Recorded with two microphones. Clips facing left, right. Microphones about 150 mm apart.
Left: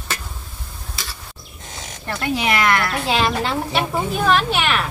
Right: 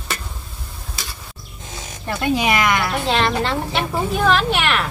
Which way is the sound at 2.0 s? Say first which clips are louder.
Right 3 dB; 15° right (ahead or behind).